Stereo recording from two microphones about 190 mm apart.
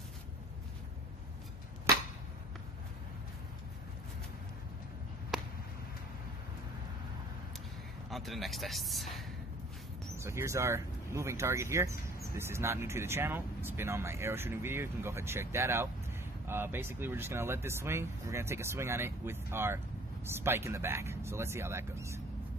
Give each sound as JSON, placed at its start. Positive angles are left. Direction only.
{"t": 5.3, "sound": "a sound", "side_deg": -5}
{"t": 8.1, "sound": "speech", "side_deg": 0}
{"t": 10.1, "sound": "speech", "side_deg": -15}